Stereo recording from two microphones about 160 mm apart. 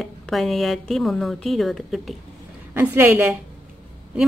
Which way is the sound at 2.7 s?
15° right (ahead or behind).